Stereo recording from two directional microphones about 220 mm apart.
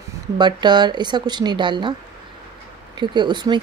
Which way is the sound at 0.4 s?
20° right (ahead or behind).